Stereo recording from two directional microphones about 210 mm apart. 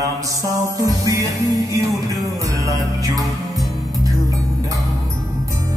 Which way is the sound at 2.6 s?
15° right (ahead or behind).